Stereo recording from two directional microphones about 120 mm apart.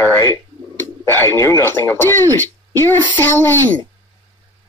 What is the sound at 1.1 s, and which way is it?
A child's voice, 20° left (ahead or behind).